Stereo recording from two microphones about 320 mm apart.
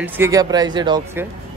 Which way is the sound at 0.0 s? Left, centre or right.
Centre.